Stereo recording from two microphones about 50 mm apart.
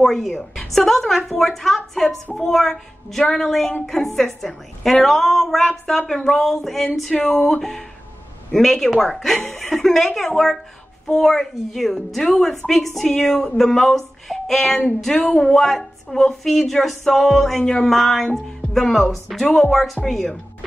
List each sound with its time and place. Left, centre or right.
0.0 s a woman's voice: centre
15.2 s speech: centre
15.5 s a woman's voice: centre